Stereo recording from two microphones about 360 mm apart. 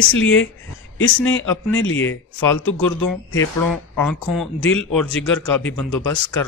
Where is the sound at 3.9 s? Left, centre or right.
Centre.